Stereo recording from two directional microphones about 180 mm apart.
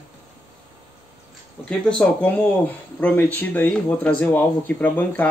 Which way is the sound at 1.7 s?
5° left (ahead or behind).